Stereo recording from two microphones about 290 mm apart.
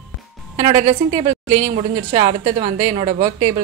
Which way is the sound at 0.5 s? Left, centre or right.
Right.